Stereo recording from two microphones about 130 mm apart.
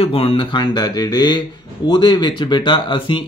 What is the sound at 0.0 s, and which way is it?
Speech, 45° left (ahead or behind).